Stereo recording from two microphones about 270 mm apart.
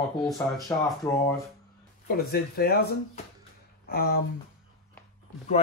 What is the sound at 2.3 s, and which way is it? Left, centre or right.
Speech, left.